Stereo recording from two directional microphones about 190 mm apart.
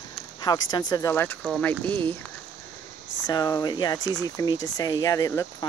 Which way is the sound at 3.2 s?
20° left (ahead or behind).